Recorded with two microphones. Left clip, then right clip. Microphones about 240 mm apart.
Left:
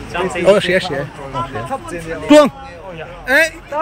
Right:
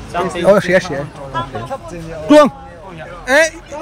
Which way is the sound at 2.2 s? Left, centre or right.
Centre.